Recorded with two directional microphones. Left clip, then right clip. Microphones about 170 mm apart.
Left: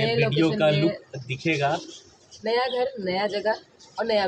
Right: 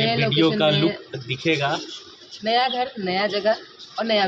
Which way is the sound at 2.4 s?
30° left (ahead or behind).